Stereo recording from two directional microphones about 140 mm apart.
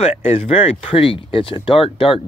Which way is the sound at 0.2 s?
40° left (ahead or behind).